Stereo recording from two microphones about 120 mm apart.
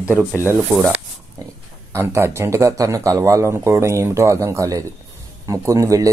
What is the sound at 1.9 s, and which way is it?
Speech, 20° right (ahead or behind).